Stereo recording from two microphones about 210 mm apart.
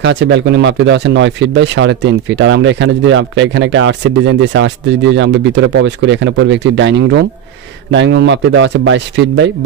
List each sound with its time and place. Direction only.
0.0 s speech: 55° right (ahead or behind)